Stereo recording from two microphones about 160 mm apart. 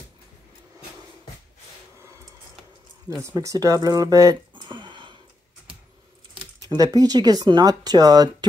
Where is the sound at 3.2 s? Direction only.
20° right (ahead or behind).